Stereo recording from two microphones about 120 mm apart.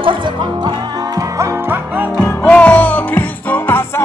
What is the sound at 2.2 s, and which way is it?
Music, 15° left (ahead or behind).